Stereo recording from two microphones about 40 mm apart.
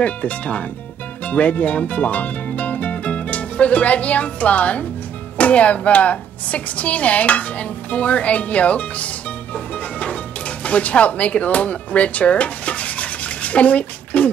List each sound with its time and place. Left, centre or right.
0.0 s a woman's voice: left